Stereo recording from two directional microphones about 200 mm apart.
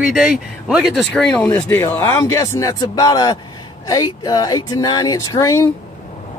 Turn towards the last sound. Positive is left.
turn(degrees=15)  # may be behind; listen again after turning